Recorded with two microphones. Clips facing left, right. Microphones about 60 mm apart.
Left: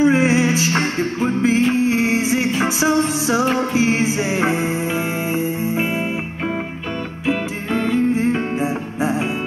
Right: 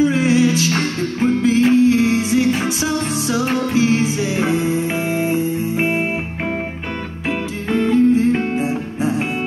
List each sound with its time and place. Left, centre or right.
0.0 s music: left
7.7 s music: left